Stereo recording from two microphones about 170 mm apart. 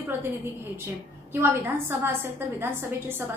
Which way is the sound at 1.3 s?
15° right (ahead or behind).